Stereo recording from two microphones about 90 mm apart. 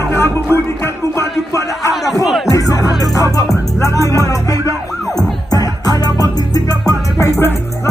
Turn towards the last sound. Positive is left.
turn(degrees=35)  # may be behind; listen again after turning